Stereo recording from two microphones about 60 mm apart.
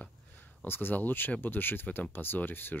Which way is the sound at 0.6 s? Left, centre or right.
Left.